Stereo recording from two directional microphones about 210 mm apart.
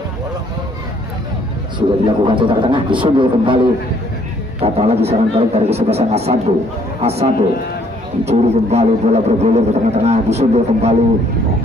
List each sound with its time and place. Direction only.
1.8 s a man's voice: 25° right (ahead or behind)
4.6 s a man's voice: 30° right (ahead or behind)